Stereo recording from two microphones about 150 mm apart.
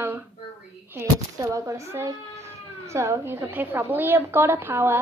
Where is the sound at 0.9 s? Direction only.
20° right (ahead or behind).